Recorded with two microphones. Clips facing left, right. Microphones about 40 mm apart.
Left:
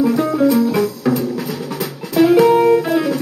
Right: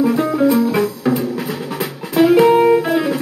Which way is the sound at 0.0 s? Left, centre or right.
Centre.